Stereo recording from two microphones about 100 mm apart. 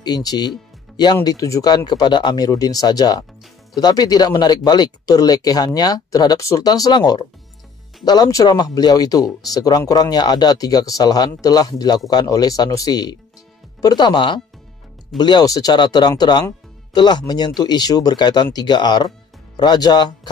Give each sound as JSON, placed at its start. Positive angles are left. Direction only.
{"t": 0.0, "sound": "speech", "side_deg": 40}
{"t": 1.9, "sound": "speech", "side_deg": 45}